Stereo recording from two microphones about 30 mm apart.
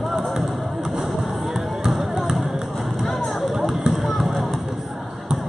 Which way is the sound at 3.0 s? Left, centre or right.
Centre.